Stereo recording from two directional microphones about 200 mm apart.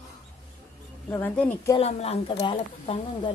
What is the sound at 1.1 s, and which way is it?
Speech, 10° left (ahead or behind).